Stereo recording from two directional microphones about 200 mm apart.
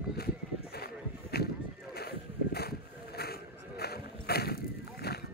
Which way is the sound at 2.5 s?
50° left (ahead or behind).